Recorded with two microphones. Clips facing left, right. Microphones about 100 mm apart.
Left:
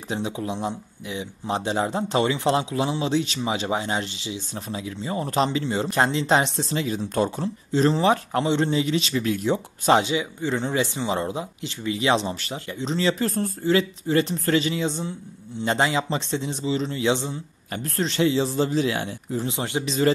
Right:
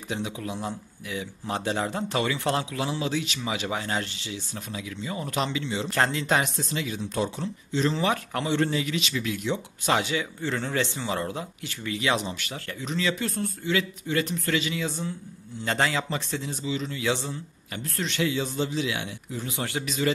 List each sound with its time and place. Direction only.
0.1 s speech: 25° left (ahead or behind)
4.6 s speech: 30° left (ahead or behind)
5.9 s speech: 20° left (ahead or behind); by 9.9 s 40° left (ahead or behind)
9.9 s speech: 20° left (ahead or behind)
16.6 s speech: 30° left (ahead or behind)
17.1 s speech: 20° left (ahead or behind)
17.7 s speech: 40° left (ahead or behind)
18.7 s speech: 40° left (ahead or behind)
19.4 s speech: 20° left (ahead or behind)